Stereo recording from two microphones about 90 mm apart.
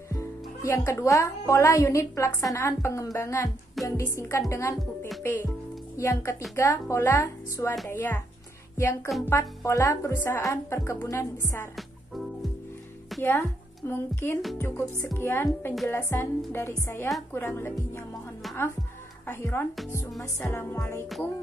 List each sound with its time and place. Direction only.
0.1 s speech: 30° left (ahead or behind)
5.2 s music: 25° left (ahead or behind)
5.9 s speech: 35° left (ahead or behind)
7.9 s music: 25° left (ahead or behind)
8.7 s speech: 35° left (ahead or behind)
10.1 s music: 25° left (ahead or behind)
10.4 s speech: 35° left (ahead or behind)
11.7 s music: centre (ahead or behind)
13.2 s speech: 25° left (ahead or behind)
14.6 s music: 25° left (ahead or behind)
19.2 s music: 25° left (ahead or behind)